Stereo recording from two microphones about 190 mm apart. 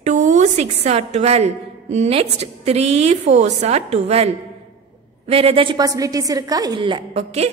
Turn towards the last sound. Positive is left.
turn(degrees=-30)  # may be behind; listen again after turning